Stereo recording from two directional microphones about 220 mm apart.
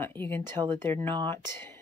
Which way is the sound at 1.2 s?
10° left (ahead or behind).